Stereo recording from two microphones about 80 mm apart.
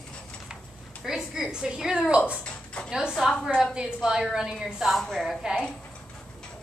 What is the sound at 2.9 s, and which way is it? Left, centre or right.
A woman's voice, centre.